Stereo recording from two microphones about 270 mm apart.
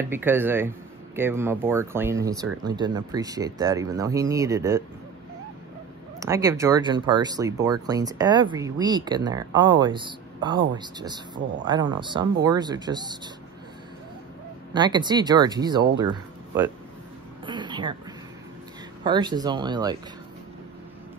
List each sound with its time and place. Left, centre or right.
0.1 s speech: centre
6.1 s speech: centre
14.7 s speech: centre
17.5 s a sound: centre
19.0 s speech: centre